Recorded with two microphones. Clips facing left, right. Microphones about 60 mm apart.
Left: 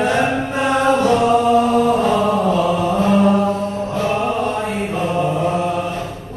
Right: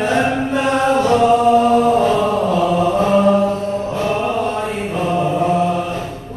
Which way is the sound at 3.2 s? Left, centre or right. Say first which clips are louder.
Right 1 dB; left.